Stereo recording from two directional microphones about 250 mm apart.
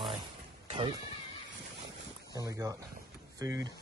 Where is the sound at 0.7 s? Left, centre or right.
Centre.